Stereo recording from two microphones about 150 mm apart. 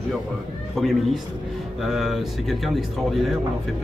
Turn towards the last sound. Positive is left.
turn(degrees=0)  # may be behind; listen again after turning